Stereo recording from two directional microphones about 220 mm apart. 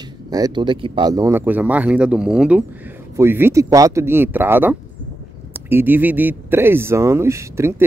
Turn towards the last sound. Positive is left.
turn(degrees=-10)  # may be behind; listen again after turning